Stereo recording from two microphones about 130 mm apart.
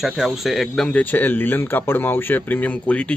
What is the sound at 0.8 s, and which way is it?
Speech, 10° left (ahead or behind).